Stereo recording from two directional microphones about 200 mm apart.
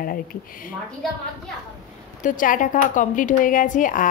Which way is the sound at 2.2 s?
40° left (ahead or behind).